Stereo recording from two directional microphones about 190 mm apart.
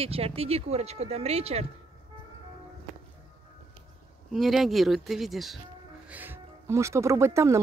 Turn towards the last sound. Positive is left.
turn(degrees=-15)  # may be behind; listen again after turning